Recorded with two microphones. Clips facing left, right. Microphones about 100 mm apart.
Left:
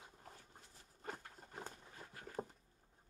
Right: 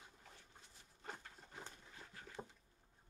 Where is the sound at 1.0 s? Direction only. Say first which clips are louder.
Left 3 dB; 45° left (ahead or behind).